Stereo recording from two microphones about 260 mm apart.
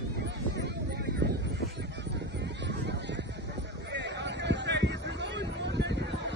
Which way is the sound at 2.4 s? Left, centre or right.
Right.